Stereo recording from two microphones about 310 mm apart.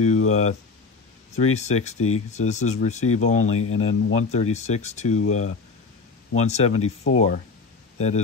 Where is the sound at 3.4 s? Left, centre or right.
Left.